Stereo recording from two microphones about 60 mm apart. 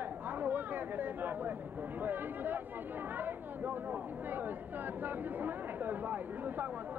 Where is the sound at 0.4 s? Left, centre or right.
Right.